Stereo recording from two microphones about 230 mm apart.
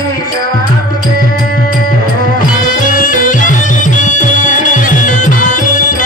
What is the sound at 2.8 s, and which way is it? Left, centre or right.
Music, left.